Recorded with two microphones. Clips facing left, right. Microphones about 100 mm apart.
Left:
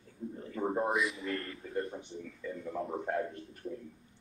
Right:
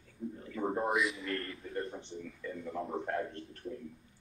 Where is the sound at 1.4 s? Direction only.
5° left (ahead or behind).